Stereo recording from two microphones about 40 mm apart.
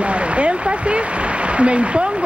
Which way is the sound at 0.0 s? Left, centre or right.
Right.